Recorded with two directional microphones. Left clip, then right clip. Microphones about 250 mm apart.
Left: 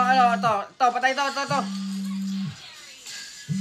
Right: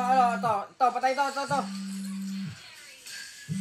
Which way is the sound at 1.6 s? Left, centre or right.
Left.